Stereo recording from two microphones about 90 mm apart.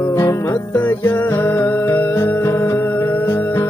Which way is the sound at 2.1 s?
30° left (ahead or behind).